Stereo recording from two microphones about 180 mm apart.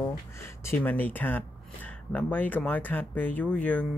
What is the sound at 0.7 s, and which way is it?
Speech, 10° left (ahead or behind).